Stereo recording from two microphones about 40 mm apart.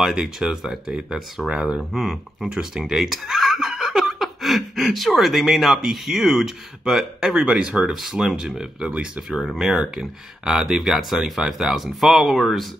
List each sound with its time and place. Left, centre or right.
0.1 s speech: right
1.9 s speech: centre
3.0 s speech: centre
7.4 s speech: right
7.9 s speech: centre
8.8 s speech: right
9.6 s speech: centre